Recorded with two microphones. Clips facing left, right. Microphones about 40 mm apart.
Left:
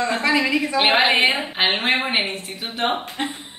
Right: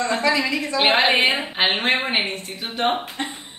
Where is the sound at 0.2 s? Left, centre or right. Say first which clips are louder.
Left 2 dB; centre.